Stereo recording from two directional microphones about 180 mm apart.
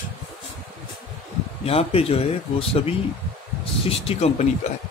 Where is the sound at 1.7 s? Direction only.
35° left (ahead or behind).